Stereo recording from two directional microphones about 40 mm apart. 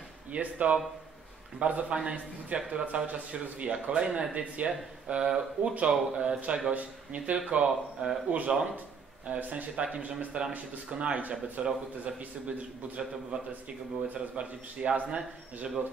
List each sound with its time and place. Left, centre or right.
0.3 s speech: right
6.7 s speech: right
7.5 s speech: right
8.3 s speech: right
9.9 s speech: right
14.0 s speech: right